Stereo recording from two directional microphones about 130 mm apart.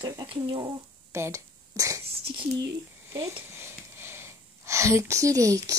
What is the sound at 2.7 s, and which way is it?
Speech, 25° right (ahead or behind).